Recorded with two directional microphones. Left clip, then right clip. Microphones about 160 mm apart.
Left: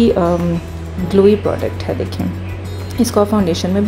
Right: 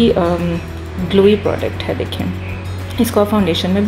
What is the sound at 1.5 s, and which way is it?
Speech, 25° left (ahead or behind).